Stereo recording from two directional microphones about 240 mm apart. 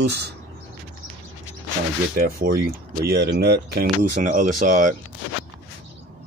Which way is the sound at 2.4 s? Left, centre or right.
Right.